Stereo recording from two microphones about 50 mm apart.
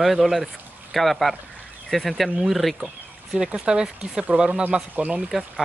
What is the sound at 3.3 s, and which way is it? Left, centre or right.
Speech, centre.